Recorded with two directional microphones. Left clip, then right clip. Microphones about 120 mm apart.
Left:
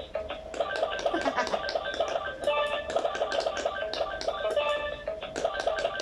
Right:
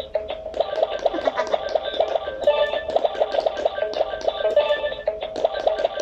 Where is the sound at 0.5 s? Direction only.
30° right (ahead or behind).